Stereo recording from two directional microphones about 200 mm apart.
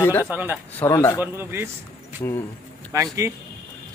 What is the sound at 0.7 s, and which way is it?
Speech, 15° left (ahead or behind).